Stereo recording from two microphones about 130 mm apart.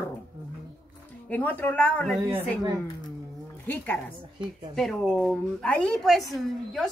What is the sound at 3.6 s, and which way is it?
Speech, 10° left (ahead or behind).